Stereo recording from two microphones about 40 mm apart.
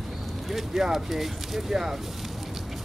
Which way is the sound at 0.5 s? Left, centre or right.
Centre.